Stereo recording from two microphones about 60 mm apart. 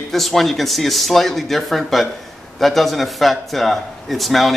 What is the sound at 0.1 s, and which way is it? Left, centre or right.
A man's voice, centre.